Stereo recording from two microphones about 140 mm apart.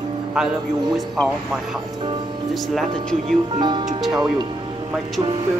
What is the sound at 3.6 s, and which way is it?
Speech, 30° right (ahead or behind).